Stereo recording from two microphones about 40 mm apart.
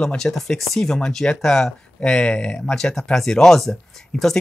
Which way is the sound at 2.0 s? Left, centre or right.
Left.